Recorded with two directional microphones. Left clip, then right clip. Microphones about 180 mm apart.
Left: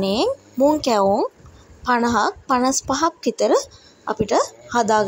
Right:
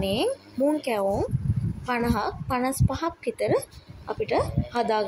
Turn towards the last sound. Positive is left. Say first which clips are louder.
# left 7 dB
turn(degrees=25)  # may be behind; listen again after turning